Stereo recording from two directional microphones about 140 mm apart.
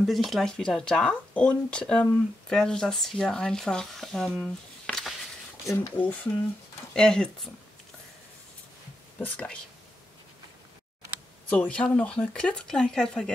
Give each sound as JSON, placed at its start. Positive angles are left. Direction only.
{"t": 0.0, "sound": "speech", "side_deg": 0}
{"t": 5.7, "sound": "speech", "side_deg": 20}
{"t": 7.0, "sound": "speech", "side_deg": 5}
{"t": 9.2, "sound": "speech", "side_deg": 10}
{"t": 11.4, "sound": "speech", "side_deg": 10}